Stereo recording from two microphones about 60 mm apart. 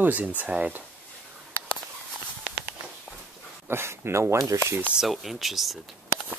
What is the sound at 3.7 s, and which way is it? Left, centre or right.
Speech, right.